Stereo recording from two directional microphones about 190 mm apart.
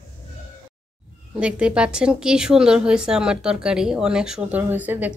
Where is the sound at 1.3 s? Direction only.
5° right (ahead or behind).